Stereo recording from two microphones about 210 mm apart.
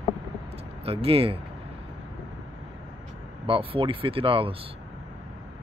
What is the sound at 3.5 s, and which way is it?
Speech, 25° right (ahead or behind).